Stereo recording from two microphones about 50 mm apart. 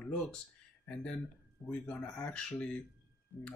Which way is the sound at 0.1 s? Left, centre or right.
Centre.